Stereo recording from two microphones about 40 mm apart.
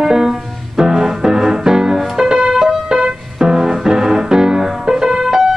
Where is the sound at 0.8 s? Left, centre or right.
Centre.